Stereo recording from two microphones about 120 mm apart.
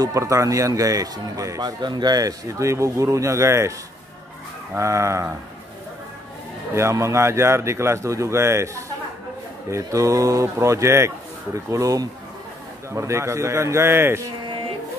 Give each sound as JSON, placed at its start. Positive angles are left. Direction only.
{"t": 0.0, "sound": "a man's voice", "side_deg": -25}
{"t": 4.7, "sound": "a man's voice", "side_deg": -25}
{"t": 6.7, "sound": "a man's voice", "side_deg": -25}